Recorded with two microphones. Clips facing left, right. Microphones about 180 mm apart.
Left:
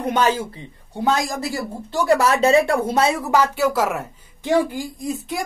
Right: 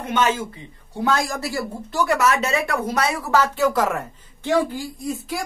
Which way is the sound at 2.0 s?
30° left (ahead or behind).